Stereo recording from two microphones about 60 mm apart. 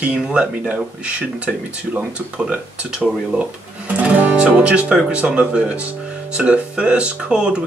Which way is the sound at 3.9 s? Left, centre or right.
Right.